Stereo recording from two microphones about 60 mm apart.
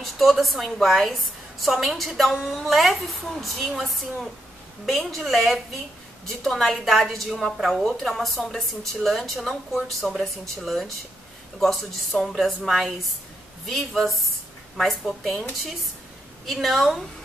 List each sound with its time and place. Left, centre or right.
0.0 s a woman's voice: centre
16.6 s a woman's voice: centre